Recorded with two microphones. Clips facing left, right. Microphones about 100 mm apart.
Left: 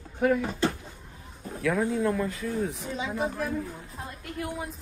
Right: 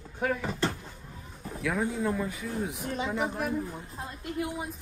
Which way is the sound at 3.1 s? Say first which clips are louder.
Left 2 dB; 20° right (ahead or behind).